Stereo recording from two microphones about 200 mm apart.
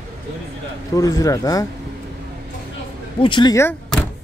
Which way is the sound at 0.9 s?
15° left (ahead or behind).